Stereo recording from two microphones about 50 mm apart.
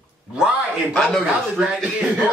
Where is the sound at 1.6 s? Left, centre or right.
Centre.